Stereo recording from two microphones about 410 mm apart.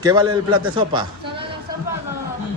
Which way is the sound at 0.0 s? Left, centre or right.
Centre.